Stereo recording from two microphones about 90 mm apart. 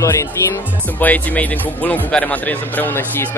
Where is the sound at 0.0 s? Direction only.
30° left (ahead or behind).